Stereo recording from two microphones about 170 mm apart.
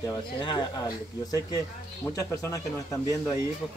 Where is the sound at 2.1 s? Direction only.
20° left (ahead or behind).